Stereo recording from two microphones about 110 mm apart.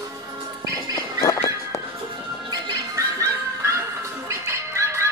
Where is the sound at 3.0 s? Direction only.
30° right (ahead or behind).